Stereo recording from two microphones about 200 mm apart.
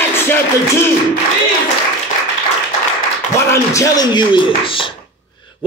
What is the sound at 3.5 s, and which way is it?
Speech, 15° left (ahead or behind).